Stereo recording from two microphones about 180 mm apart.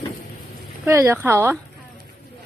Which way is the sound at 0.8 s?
10° right (ahead or behind).